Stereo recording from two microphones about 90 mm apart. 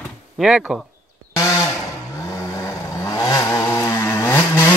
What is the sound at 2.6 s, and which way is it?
Vehicle, 40° left (ahead or behind).